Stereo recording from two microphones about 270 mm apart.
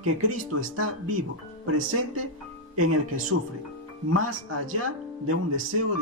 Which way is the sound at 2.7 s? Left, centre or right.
Right.